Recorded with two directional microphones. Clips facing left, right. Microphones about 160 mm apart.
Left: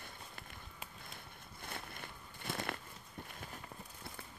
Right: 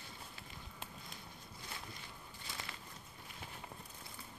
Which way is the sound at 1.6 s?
55° left (ahead or behind).